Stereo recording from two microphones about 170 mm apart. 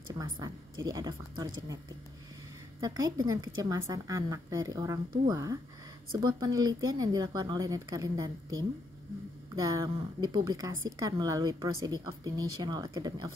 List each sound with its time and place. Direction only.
0.1 s a woman's voice: 20° right (ahead or behind)
2.8 s a woman's voice: 20° right (ahead or behind)
9.6 s a woman's voice: 20° right (ahead or behind)